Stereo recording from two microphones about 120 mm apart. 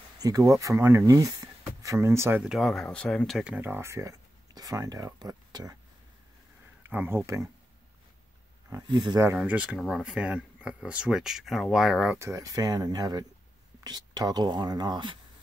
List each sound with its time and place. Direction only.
0.2 s speech: 30° right (ahead or behind)
2.4 s speech: centre (ahead or behind)
3.4 s speech: 15° right (ahead or behind); by 5.8 s 30° right (ahead or behind)
6.9 s speech: 20° right (ahead or behind)
8.8 s speech: 35° right (ahead or behind)
9.4 s speech: 10° right (ahead or behind)
12.2 s speech: 25° right (ahead or behind)